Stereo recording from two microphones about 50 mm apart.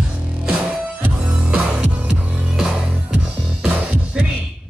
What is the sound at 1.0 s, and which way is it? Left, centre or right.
Music, right.